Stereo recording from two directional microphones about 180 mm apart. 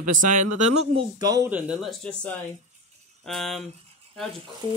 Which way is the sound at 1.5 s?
5° right (ahead or behind).